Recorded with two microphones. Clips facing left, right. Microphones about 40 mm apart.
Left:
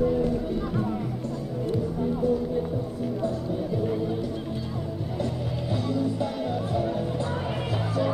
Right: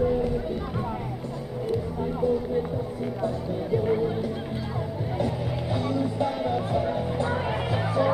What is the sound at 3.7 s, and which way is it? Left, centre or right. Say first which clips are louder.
Music: right 6 dB; right.